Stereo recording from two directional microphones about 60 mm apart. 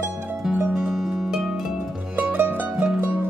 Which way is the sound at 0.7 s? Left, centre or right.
Centre.